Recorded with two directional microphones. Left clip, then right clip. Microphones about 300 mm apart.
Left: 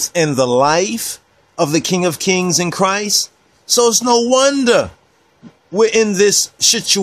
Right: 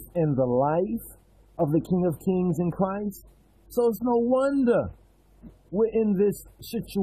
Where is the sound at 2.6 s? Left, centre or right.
Left.